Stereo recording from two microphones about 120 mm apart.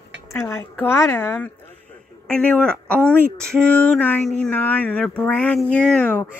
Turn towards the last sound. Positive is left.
turn(degrees=10)  # may be behind; listen again after turning